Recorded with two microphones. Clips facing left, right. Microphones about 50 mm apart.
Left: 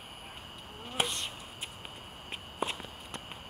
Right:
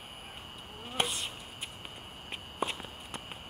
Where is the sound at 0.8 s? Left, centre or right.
Centre.